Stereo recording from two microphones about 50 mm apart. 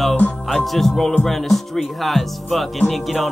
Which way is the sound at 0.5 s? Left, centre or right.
Centre.